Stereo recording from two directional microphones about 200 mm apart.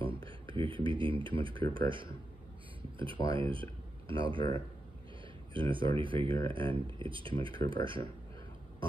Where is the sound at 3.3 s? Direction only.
25° right (ahead or behind).